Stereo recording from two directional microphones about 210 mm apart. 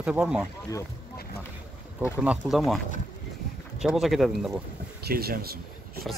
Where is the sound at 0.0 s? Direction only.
5° right (ahead or behind).